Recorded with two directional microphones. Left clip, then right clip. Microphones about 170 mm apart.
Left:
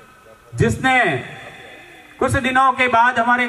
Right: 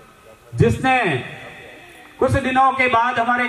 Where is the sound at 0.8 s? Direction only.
30° left (ahead or behind).